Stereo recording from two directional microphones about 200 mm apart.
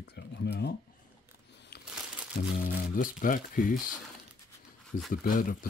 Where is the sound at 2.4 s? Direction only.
45° left (ahead or behind).